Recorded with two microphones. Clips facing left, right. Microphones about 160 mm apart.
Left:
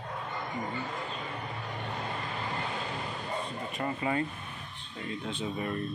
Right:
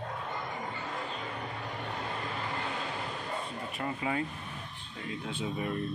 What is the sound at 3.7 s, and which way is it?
Speech, 5° right (ahead or behind).